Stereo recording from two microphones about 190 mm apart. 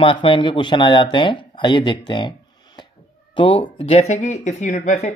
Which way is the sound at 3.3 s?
25° left (ahead or behind).